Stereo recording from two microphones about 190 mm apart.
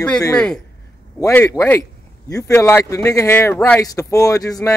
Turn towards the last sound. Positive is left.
turn(degrees=20)  # may be behind; listen again after turning